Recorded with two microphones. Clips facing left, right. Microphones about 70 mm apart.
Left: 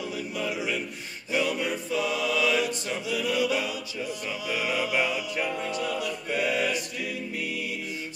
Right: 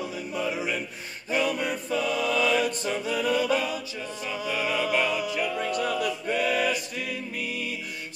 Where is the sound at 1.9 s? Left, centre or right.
Centre.